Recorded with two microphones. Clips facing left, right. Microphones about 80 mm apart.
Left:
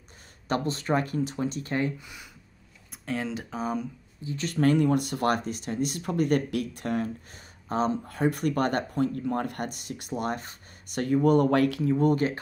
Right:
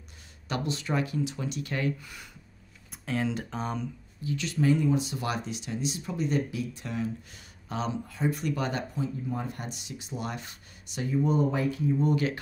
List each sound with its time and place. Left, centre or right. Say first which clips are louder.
0.5 s speech: left 4 dB; left
1.9 s speech: right 3 dB; centre
2.9 s speech: right 1 dB; centre
4.4 s speech: left 3 dB; left
11.2 s speech: left 7 dB; left
12.1 s speech: left 3 dB; left